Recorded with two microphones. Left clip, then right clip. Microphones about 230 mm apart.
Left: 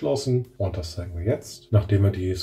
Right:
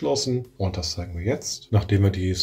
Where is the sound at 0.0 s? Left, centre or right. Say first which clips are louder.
Even; right.